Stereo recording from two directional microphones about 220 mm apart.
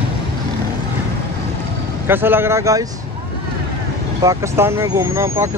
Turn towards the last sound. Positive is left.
turn(degrees=-15)  # may be behind; listen again after turning